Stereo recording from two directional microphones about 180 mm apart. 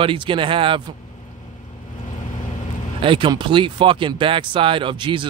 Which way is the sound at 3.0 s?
30° right (ahead or behind).